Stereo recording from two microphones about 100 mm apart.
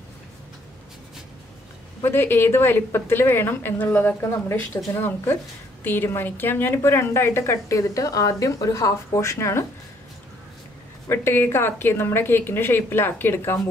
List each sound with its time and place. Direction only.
2.0 s a woman's voice: 20° left (ahead or behind)
11.1 s a woman's voice: 20° left (ahead or behind)